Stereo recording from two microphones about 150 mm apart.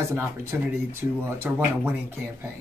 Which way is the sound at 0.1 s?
15° right (ahead or behind).